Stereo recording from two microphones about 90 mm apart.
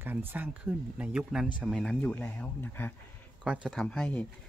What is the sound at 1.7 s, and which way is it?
Speech, 5° left (ahead or behind).